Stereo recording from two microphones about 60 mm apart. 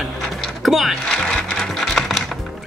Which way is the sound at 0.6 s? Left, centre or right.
Centre.